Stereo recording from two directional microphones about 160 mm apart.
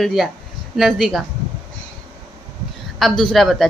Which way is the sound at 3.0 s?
Centre (ahead or behind).